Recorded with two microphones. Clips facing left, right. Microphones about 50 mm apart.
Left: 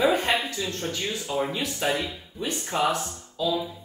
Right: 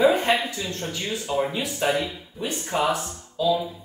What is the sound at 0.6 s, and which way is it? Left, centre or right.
Speech, centre.